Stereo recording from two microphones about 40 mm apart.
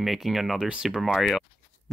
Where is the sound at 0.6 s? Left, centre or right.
Right.